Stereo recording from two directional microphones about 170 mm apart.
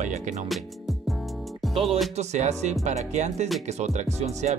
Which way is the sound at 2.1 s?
40° right (ahead or behind).